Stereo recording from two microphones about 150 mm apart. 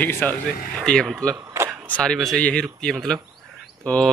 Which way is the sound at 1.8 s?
5° left (ahead or behind).